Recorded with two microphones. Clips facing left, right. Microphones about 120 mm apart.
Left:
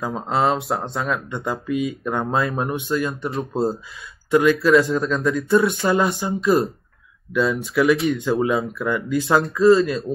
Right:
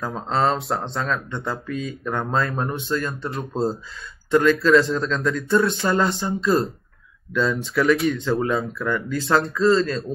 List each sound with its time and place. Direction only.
0.0 s speech: 5° left (ahead or behind)
1.4 s speech: 15° left (ahead or behind)
3.3 s speech: centre (ahead or behind)
7.3 s speech: 5° left (ahead or behind)